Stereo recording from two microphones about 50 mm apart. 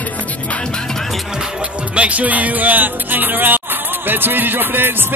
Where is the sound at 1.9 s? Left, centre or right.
Right.